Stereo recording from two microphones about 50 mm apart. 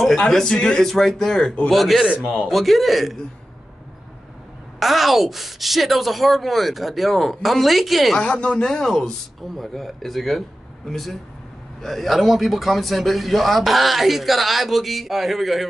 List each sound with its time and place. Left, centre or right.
0.3 s speech: centre
1.7 s a man's voice: centre
4.7 s a man's voice: centre
8.2 s a man's voice: left; by 15.7 s centre